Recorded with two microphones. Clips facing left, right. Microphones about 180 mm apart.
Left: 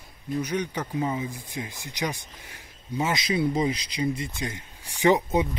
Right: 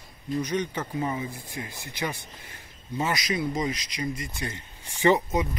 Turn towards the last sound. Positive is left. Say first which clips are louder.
# left 3 dB
turn(degrees=30)  # may be behind; listen again after turning